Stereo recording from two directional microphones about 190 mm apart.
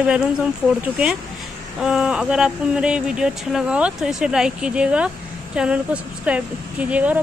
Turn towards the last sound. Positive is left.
turn(degrees=-5)  # may be behind; listen again after turning